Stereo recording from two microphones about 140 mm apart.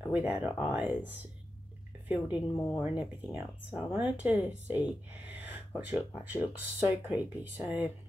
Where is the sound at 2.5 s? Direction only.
20° left (ahead or behind).